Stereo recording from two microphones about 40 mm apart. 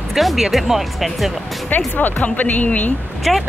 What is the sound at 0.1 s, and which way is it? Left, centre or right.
Speech, centre.